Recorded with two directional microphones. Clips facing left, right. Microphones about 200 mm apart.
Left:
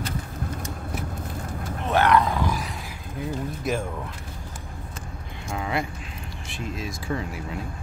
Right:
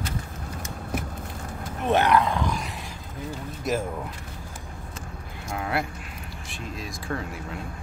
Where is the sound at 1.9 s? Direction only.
15° right (ahead or behind).